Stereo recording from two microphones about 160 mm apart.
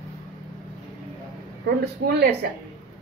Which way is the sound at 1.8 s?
90° right.